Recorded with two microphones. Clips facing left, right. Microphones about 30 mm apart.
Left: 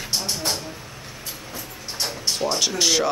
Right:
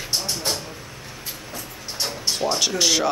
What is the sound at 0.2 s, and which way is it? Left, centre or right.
Vehicle, centre.